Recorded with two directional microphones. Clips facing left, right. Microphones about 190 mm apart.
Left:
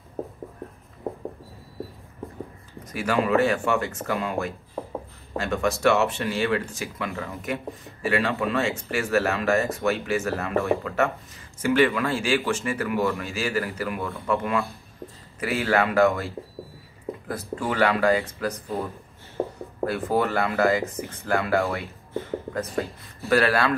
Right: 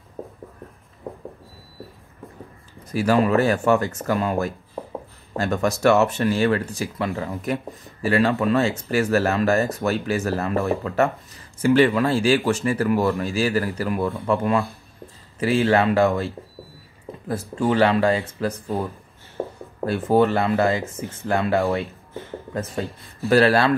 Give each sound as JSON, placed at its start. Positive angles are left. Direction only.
{"t": 2.9, "sound": "speech", "side_deg": -35}
{"t": 17.3, "sound": "speech", "side_deg": -30}
{"t": 19.9, "sound": "speech", "side_deg": -25}